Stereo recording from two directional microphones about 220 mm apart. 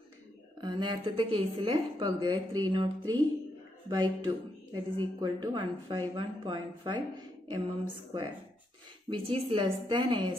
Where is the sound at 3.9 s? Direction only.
20° right (ahead or behind).